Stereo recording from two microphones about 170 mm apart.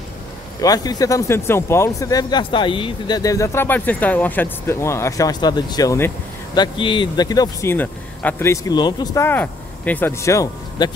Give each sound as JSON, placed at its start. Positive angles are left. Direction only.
{"t": 0.6, "sound": "speech", "side_deg": 20}
{"t": 7.7, "sound": "speech", "side_deg": 10}